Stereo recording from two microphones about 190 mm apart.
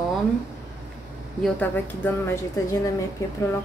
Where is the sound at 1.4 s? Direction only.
10° left (ahead or behind).